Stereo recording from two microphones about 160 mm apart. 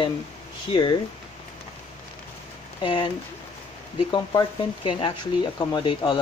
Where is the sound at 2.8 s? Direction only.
30° left (ahead or behind).